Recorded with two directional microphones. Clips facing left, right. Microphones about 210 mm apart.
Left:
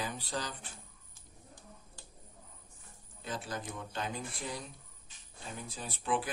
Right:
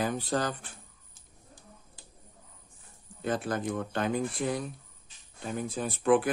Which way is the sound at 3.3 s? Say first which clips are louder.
Right 10 dB; 55° right (ahead or behind).